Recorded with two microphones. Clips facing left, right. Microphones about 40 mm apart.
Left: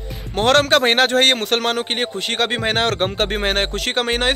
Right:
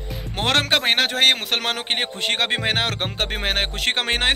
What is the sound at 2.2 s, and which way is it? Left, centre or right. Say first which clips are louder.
Speech: left 1 dB; right.